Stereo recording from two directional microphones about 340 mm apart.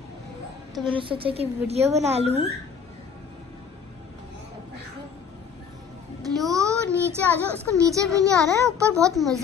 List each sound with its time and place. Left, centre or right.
0.8 s a child's voice: centre
6.4 s child singing: centre
7.2 s a child's voice: centre
7.8 s a child's voice: centre